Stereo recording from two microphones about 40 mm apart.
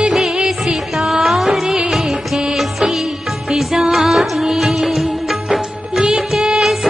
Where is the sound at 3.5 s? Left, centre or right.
Centre.